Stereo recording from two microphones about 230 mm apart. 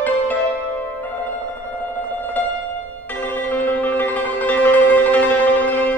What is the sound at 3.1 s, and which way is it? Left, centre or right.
Music, centre.